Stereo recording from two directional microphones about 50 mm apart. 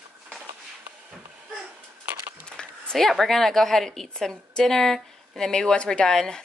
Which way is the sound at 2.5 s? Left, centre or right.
Centre.